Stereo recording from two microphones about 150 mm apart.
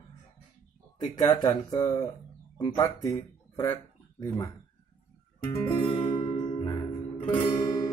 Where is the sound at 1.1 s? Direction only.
25° left (ahead or behind).